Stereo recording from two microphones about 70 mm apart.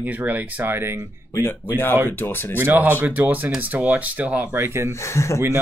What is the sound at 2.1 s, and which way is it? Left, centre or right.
Speech, left.